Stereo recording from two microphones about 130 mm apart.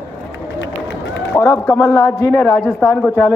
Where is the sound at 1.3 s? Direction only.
20° left (ahead or behind).